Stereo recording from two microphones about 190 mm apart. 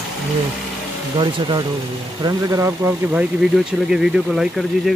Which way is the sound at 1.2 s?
25° right (ahead or behind).